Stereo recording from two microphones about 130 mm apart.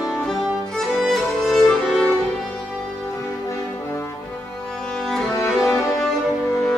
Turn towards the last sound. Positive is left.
turn(degrees=0)  # may be behind; listen again after turning